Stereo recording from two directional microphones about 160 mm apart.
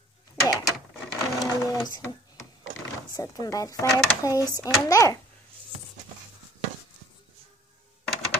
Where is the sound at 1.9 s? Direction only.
20° left (ahead or behind).